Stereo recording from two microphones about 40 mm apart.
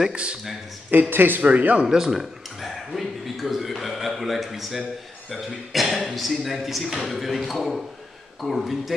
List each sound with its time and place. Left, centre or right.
0.1 s speech: right
1.1 s speech: right
1.4 s speech: right
1.9 s a man's voice: centre
2.1 s speech: centre